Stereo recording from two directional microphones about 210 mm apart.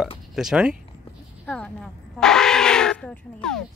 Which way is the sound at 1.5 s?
5° left (ahead or behind).